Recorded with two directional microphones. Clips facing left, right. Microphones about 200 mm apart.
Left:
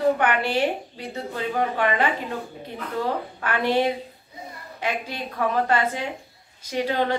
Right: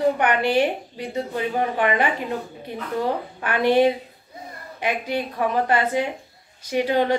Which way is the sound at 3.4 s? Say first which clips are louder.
Right 4 dB; 15° right (ahead or behind).